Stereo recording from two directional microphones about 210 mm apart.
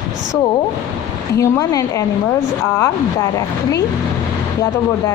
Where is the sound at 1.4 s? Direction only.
15° left (ahead or behind).